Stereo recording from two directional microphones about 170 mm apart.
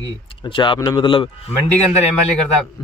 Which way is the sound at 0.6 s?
25° left (ahead or behind).